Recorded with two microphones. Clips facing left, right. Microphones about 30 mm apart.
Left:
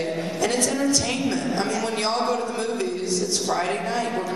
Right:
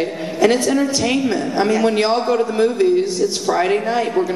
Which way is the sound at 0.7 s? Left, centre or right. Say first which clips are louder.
Right 6 dB; centre.